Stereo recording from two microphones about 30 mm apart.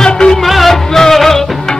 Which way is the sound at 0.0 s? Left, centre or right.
Left.